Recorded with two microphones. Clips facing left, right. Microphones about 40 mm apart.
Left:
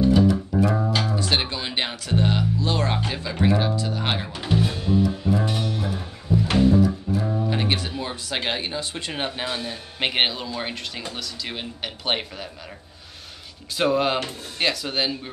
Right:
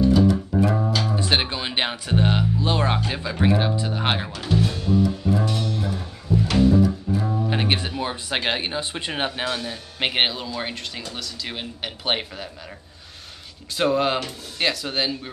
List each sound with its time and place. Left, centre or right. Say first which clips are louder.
0.3 s music: right 1 dB; centre
1.1 s music: right 1 dB; right
3.1 s speech: right 1 dB; centre
4.3 s music: even; centre
6.8 s music: even; centre
7.4 s music: right 1 dB; right
8.0 s speech: right 3 dB; right
9.4 s a man's voice: right 2 dB; centre
13.7 s a man's voice: even; centre